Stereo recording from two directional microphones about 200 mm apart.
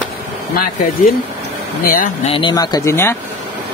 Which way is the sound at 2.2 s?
25° left (ahead or behind).